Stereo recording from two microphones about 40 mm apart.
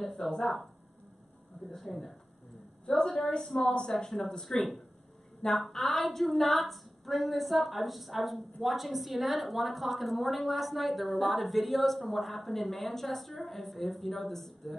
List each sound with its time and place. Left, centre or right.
0.0 s a woman's voice: centre
1.9 s a woman's voice: centre
2.9 s a woman's voice: centre
5.7 s a woman's voice: centre